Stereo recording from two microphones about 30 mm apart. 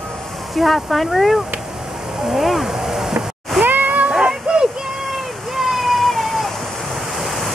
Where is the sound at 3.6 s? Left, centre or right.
Right.